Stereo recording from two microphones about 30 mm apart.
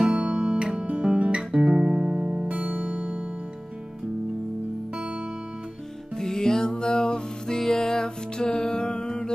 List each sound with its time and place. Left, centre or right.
0.1 s music: right
1.0 s music: right
2.4 s music: right
6.1 s music: centre